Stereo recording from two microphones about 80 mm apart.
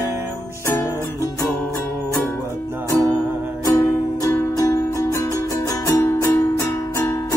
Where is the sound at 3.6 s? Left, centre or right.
Left.